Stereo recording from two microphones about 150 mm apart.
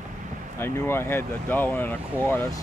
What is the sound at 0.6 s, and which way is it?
Speech, 15° left (ahead or behind).